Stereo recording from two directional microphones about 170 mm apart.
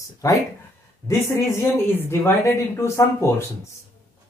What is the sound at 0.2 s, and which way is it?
Speech, 20° left (ahead or behind).